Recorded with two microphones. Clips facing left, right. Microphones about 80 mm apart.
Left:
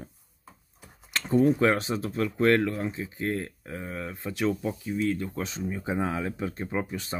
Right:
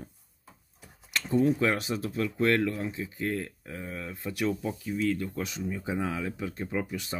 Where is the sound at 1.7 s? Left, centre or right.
Left.